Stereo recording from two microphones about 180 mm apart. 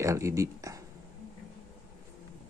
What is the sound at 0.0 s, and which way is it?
Speech, 15° right (ahead or behind).